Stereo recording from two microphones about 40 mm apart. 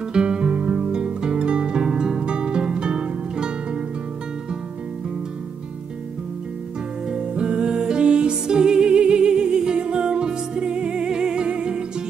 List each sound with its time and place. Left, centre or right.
0.1 s music: right
7.1 s music: right